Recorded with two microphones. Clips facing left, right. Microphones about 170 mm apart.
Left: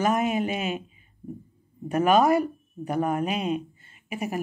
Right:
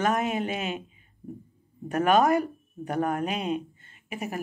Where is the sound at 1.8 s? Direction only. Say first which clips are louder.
Left 2 dB; 5° left (ahead or behind).